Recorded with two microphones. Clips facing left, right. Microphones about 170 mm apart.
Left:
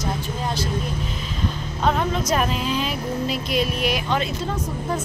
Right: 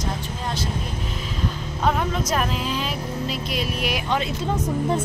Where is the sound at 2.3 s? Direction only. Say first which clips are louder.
Left 2 dB; centre (ahead or behind).